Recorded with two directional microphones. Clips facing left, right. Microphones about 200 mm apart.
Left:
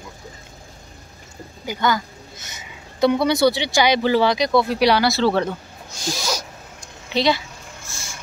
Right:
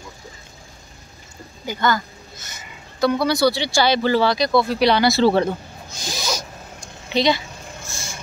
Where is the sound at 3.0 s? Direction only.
20° left (ahead or behind).